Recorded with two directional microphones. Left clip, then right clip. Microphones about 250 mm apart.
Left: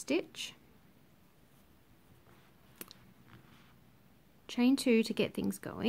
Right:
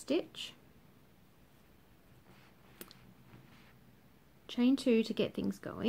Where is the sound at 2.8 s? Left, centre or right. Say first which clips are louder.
Left 2 dB; centre.